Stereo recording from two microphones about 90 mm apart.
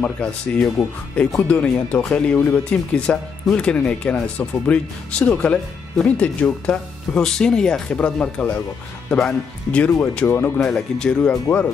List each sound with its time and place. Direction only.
0.0 s speech: 15° left (ahead or behind)
10.6 s speech: 10° left (ahead or behind)